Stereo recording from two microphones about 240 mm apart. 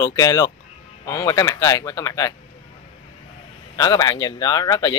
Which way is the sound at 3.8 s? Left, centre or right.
Centre.